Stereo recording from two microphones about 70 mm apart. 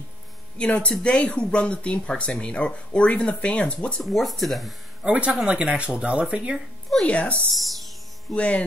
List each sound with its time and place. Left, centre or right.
0.6 s speech: centre
4.0 s speech: centre
5.0 s speech: centre
7.1 s speech: centre
7.5 s speech: centre
8.4 s music: centre